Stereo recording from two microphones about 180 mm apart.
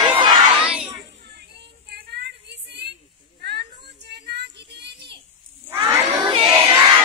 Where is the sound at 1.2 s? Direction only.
65° right (ahead or behind).